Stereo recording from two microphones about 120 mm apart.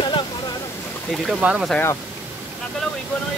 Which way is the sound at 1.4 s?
5° right (ahead or behind).